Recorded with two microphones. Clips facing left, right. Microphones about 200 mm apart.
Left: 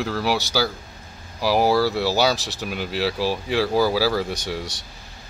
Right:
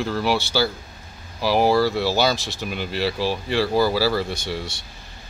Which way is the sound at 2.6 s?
5° left (ahead or behind).